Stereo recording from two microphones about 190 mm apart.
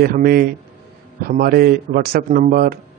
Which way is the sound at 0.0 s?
50° right (ahead or behind).